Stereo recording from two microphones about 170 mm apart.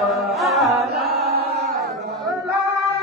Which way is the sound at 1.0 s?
65° right (ahead or behind).